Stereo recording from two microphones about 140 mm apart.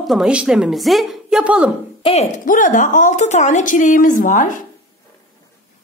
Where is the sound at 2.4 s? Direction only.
70° left (ahead or behind).